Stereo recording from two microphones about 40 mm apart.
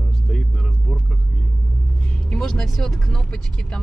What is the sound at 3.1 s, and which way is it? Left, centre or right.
Speech, centre.